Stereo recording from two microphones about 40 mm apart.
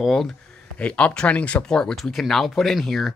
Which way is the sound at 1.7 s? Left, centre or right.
Centre.